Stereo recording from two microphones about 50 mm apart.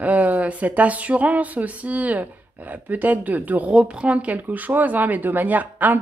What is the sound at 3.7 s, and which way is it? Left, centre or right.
A woman's voice, centre.